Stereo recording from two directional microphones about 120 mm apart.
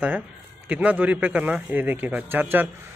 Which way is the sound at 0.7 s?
10° right (ahead or behind).